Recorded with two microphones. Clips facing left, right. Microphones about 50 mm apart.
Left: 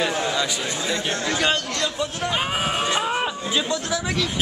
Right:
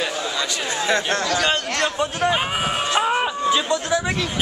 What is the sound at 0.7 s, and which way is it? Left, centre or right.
A man's voice, right.